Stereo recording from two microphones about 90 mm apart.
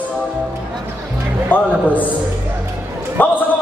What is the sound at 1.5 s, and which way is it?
Music, 20° left (ahead or behind).